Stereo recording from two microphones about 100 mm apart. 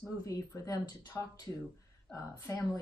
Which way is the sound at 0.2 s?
35° left (ahead or behind).